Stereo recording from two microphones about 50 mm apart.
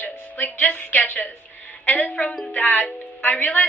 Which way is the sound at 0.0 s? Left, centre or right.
Left.